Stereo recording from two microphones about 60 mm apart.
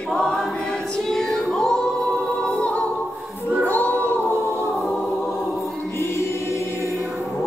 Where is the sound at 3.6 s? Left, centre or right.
Left.